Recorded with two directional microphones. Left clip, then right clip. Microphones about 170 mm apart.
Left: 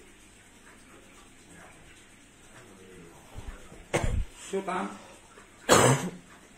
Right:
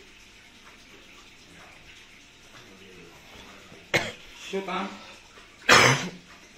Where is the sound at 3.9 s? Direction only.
5° left (ahead or behind).